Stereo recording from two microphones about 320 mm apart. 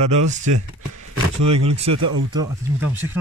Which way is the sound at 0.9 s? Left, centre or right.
Right.